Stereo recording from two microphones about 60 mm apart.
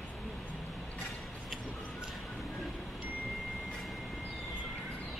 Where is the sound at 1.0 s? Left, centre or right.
Centre.